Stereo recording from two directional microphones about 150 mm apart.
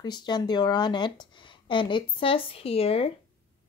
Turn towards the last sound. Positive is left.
turn(degrees=40)  # may be behind; listen again after turning